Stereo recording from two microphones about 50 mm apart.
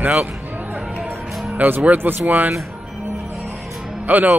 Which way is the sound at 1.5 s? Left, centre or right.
Right.